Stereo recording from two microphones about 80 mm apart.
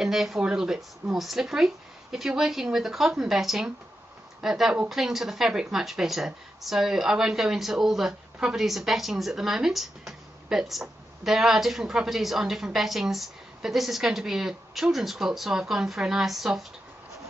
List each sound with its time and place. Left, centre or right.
0.0 s speech: centre